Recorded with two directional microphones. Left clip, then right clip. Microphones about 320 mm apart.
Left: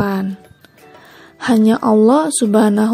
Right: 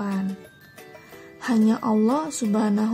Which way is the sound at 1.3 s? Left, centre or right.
Left.